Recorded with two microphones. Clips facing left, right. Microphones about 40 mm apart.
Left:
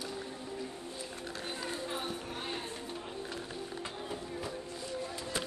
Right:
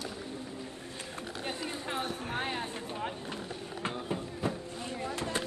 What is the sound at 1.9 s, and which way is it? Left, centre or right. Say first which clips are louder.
A woman's voice: right 3 dB; right.